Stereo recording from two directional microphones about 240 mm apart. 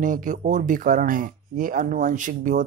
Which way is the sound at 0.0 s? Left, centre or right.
Right.